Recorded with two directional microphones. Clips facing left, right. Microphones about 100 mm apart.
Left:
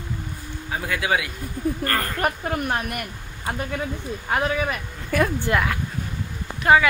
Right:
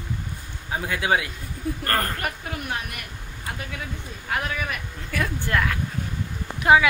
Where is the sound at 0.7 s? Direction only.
25° right (ahead or behind).